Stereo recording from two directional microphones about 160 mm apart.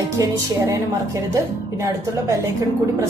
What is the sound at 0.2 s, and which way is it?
A woman's voice, 20° right (ahead or behind).